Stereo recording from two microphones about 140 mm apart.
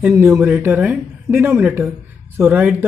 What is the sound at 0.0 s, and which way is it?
Speech, 15° right (ahead or behind).